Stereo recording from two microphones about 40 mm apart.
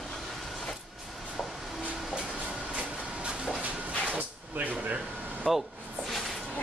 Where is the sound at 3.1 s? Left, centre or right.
Right.